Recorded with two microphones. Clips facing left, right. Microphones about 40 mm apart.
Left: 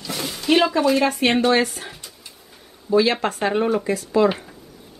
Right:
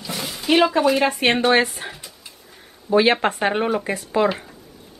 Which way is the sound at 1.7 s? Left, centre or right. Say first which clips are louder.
Right 2 dB; centre.